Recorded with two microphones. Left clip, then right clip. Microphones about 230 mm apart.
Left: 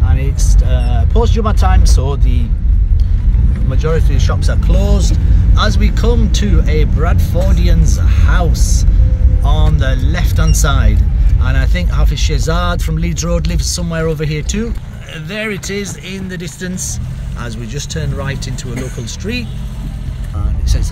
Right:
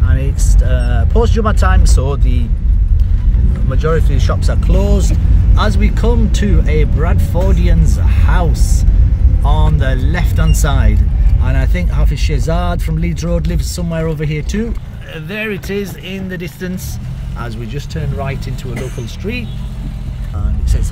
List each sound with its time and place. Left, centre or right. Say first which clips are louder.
0.1 s speech: even; centre
3.7 s speech: right 2 dB; centre
15.2 s speech: even; centre